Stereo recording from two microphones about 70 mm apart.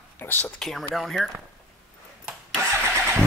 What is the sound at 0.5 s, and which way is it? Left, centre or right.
Speech, centre.